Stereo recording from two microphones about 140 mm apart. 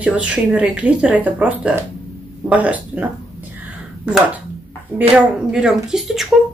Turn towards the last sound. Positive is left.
turn(degrees=0)  # may be behind; listen again after turning